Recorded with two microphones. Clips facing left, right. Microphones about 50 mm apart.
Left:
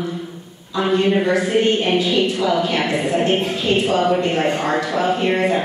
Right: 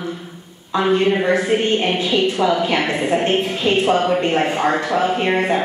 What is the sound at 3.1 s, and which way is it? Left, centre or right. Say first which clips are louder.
Speech: right 1 dB; right.